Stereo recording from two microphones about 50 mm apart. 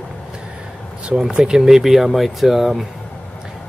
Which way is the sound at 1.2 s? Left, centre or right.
Centre.